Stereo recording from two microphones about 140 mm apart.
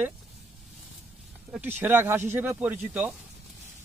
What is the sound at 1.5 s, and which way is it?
Speech, 15° right (ahead or behind).